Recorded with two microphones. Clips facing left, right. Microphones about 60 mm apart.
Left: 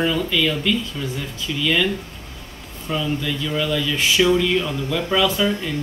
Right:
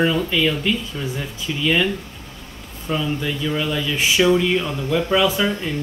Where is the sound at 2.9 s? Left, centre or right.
Centre.